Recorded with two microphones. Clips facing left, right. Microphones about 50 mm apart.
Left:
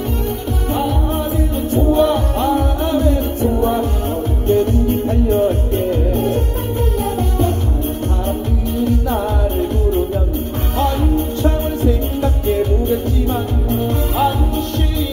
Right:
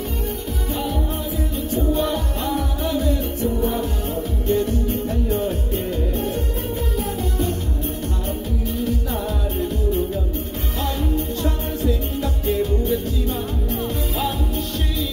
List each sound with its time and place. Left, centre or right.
1.7 s music: left
8.8 s music: left
10.8 s music: left